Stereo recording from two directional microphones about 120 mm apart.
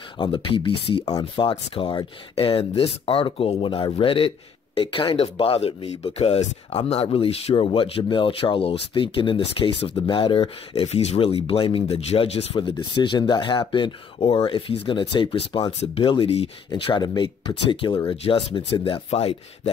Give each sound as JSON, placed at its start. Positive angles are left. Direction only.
{"t": 0.2, "sound": "speech", "side_deg": 45}
{"t": 1.0, "sound": "speech", "side_deg": 35}
{"t": 12.5, "sound": "speech", "side_deg": 40}
{"t": 16.1, "sound": "speech", "side_deg": 55}
{"t": 18.1, "sound": "speech", "side_deg": 55}
{"t": 18.5, "sound": "speech", "side_deg": 45}
{"t": 19.0, "sound": "speech", "side_deg": 60}